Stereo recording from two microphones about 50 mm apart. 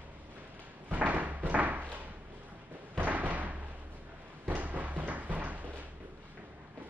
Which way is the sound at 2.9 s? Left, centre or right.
Right.